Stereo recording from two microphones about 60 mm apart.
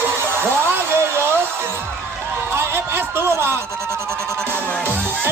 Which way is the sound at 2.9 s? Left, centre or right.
Right.